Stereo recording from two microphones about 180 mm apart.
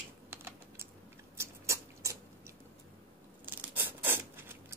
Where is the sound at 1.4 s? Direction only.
15° right (ahead or behind).